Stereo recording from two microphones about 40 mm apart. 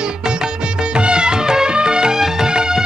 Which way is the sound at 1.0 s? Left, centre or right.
Right.